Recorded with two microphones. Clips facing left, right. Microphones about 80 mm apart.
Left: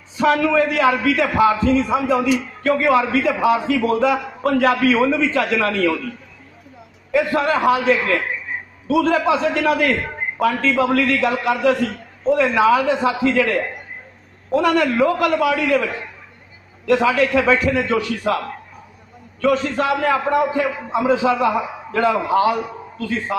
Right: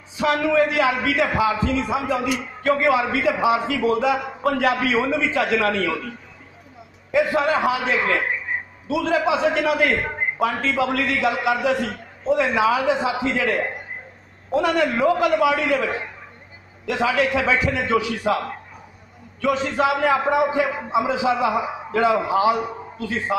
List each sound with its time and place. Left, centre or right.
0.2 s a man's voice: centre
7.2 s a man's voice: centre
17.0 s a man's voice: centre
19.4 s a man's voice: centre